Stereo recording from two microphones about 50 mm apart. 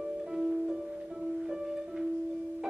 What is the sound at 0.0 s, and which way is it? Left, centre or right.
Music, centre.